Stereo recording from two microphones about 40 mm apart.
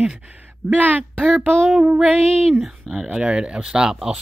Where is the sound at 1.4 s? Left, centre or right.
Right.